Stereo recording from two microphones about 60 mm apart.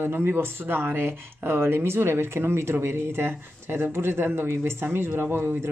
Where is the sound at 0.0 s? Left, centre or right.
Right.